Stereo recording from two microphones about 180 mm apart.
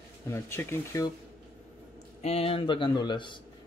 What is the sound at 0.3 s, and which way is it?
Speech, 15° left (ahead or behind).